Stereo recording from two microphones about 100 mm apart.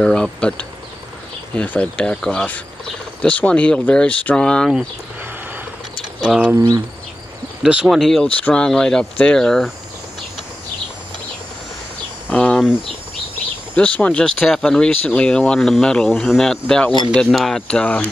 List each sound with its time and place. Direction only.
0.0 s speech: 10° left (ahead or behind)
6.2 s speech: 10° right (ahead or behind)
6.5 s speech: 35° right (ahead or behind)
7.6 s speech: 10° right (ahead or behind)
8.3 s speech: 15° left (ahead or behind)
12.3 s a sound: 15° left (ahead or behind)
13.7 s speech: 15° left (ahead or behind)